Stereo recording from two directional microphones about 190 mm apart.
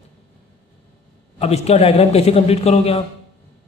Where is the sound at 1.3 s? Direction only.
35° left (ahead or behind).